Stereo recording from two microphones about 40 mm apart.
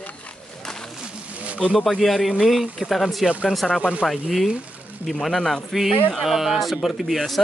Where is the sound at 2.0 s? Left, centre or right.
Centre.